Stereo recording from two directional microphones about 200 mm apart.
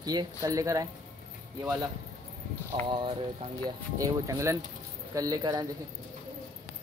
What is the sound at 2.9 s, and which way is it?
Speech, 25° right (ahead or behind).